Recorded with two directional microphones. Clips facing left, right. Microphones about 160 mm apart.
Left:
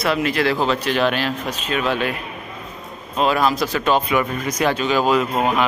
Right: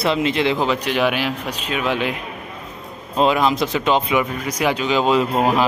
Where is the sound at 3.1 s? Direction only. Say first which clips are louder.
Right 1 dB; 20° right (ahead or behind).